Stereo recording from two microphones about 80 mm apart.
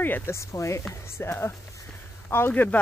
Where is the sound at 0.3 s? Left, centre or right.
Left.